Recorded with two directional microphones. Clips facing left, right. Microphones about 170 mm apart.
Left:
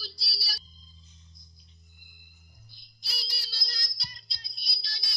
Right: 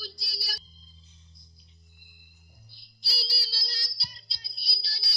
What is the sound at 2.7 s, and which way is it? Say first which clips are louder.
Music: right 3 dB; 30° right (ahead or behind).